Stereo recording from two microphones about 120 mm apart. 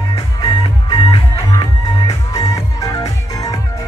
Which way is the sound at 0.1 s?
35° left (ahead or behind).